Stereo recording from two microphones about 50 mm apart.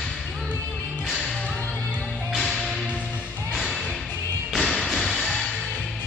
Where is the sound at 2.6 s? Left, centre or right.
Centre.